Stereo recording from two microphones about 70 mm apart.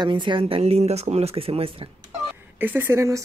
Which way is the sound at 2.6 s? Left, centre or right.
Right.